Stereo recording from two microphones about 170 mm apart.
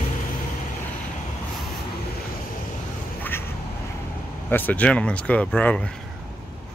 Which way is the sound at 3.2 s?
15° left (ahead or behind).